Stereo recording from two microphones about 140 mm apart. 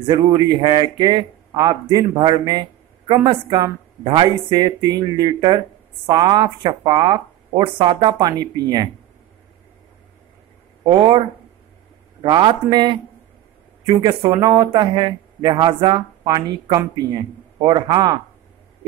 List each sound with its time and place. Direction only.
0.0 s a man's voice: 30° right (ahead or behind)
10.9 s a man's voice: 30° right (ahead or behind)